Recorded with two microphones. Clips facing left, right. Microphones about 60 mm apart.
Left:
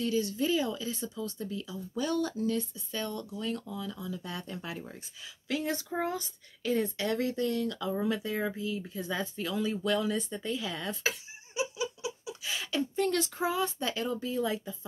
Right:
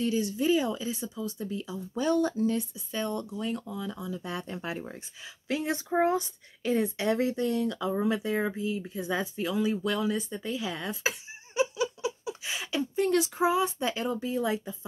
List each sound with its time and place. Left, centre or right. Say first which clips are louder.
0.0 s speech: right 2 dB; centre
1.5 s speech: right 3 dB; right
9.0 s speech: right 5 dB; centre
11.6 s giggle: right 6 dB; right
12.4 s speech: even; centre